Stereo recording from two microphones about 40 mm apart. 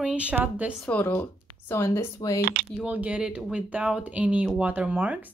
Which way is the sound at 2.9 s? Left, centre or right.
Right.